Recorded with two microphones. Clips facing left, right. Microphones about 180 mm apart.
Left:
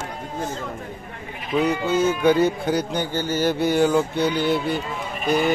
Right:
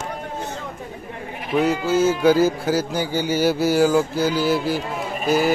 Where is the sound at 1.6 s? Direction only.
5° right (ahead or behind).